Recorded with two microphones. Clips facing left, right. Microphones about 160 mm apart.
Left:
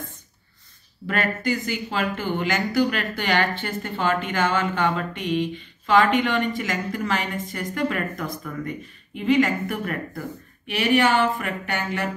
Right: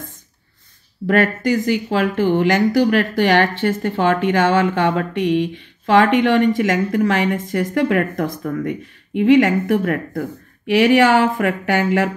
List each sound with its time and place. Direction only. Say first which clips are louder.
1.0 s speech: right 8 dB; 65° right (ahead or behind)
10.7 s speech: right 7 dB; 85° right